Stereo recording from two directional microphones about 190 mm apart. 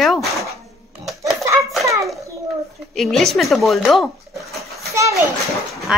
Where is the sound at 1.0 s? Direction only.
Centre (ahead or behind).